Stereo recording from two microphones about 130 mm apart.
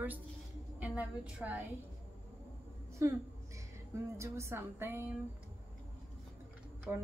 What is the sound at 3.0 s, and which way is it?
A woman's voice, 20° right (ahead or behind).